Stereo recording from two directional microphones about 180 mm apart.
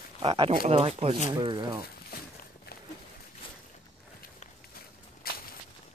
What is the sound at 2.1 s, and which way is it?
Walk, 55° left (ahead or behind).